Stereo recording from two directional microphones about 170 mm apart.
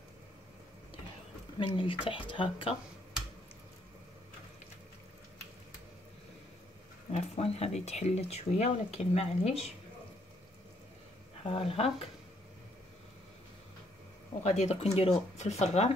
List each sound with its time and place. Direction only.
1.6 s speech: 30° left (ahead or behind)
7.1 s speech: 35° left (ahead or behind)
11.4 s speech: 35° left (ahead or behind)
14.4 s speech: 40° left (ahead or behind)